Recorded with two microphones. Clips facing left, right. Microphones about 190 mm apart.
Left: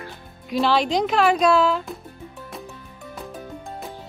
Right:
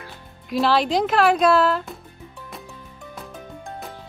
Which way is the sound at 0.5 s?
Centre (ahead or behind).